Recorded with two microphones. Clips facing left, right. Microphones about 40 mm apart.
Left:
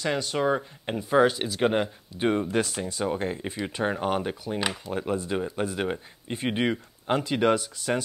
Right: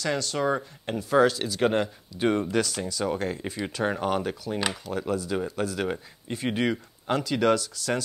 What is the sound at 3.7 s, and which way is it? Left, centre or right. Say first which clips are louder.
Speech: even; centre.